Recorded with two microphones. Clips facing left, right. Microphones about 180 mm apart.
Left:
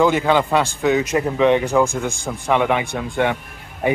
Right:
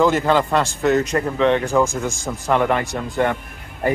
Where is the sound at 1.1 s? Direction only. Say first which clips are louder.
Left 2 dB; 15° left (ahead or behind).